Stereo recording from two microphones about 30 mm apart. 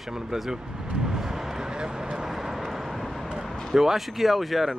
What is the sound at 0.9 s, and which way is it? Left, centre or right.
Vehicle, centre.